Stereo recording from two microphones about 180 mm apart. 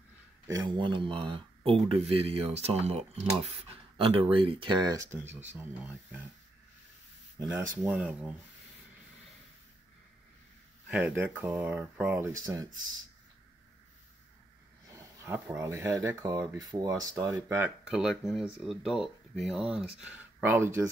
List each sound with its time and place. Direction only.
0.5 s speech: 25° right (ahead or behind)
7.3 s speech: 15° right (ahead or behind)
10.9 s speech: 5° right (ahead or behind)
15.2 s speech: 15° right (ahead or behind)
17.5 s speech: 5° right (ahead or behind)